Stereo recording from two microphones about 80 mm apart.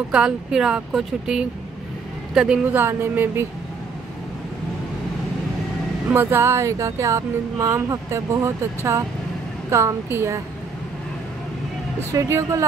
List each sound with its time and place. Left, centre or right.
0.1 s speech: centre
2.6 s speech: right
6.1 s speech: right
12.0 s speech: right